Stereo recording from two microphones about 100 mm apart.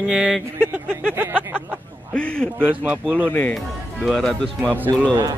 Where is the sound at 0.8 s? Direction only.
20° right (ahead or behind).